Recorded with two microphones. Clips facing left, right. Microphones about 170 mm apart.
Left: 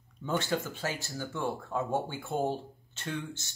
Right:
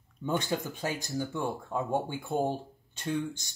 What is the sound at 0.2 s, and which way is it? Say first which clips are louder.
Speech: right 1 dB; 15° right (ahead or behind).